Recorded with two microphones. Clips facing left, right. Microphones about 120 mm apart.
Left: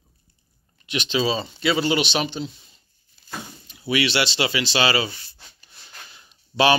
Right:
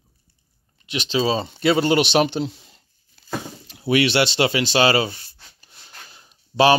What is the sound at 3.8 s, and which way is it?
Speech, 50° right (ahead or behind).